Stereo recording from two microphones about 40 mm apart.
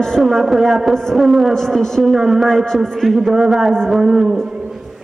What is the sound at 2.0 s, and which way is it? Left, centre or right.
Speech, centre.